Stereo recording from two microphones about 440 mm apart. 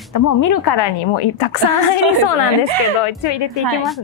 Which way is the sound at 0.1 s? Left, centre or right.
Left.